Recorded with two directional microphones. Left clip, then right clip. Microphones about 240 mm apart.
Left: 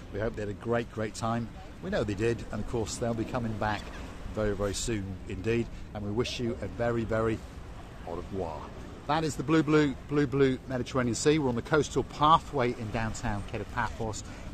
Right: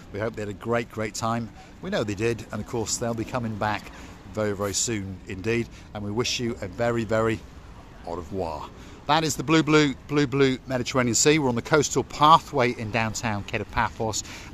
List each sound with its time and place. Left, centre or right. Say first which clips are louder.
0.1 s a man's voice: right 3 dB; right